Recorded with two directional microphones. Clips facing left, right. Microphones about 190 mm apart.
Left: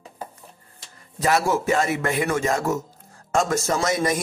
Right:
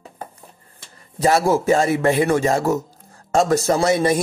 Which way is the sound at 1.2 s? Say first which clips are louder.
Right 4 dB; 35° right (ahead or behind).